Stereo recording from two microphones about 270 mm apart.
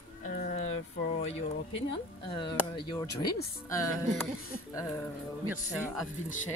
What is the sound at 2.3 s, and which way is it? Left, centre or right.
Speech, centre.